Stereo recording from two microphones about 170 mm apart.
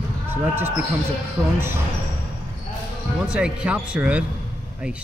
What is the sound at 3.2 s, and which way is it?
Speech, 5° right (ahead or behind).